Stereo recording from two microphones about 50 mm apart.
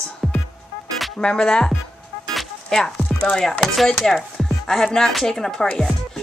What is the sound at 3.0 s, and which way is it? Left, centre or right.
Chopping, centre.